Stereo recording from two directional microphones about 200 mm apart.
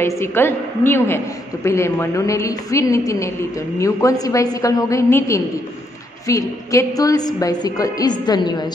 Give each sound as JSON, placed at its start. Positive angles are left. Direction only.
{"t": 0.0, "sound": "a woman's voice", "side_deg": 10}